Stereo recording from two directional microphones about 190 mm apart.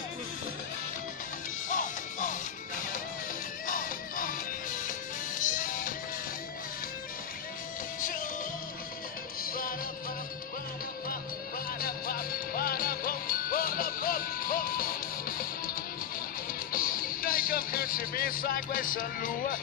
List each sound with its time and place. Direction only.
1.7 s music: 45° left (ahead or behind)
3.6 s music: 50° left (ahead or behind)
8.0 s music: 45° left (ahead or behind)
9.4 s music: 50° left (ahead or behind)
11.8 s music: 50° left (ahead or behind)